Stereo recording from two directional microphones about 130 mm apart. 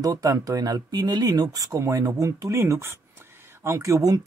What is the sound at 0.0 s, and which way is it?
Speech, 25° right (ahead or behind).